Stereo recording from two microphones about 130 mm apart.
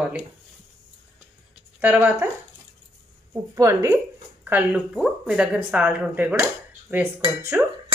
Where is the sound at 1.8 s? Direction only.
10° right (ahead or behind).